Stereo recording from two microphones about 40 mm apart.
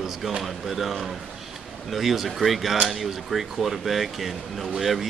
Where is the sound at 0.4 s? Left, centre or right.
Centre.